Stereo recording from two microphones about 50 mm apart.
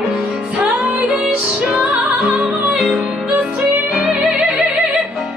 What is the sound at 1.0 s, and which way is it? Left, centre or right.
Music, centre.